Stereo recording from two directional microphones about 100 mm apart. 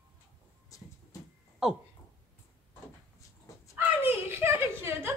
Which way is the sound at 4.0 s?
20° right (ahead or behind).